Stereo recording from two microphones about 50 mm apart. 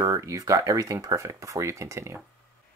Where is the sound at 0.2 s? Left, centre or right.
Right.